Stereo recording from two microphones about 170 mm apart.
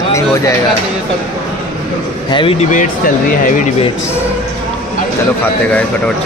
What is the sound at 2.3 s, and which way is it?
Speech, 30° left (ahead or behind).